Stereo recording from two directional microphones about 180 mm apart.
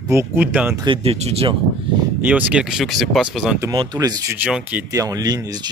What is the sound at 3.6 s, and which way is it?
Speech, 20° right (ahead or behind).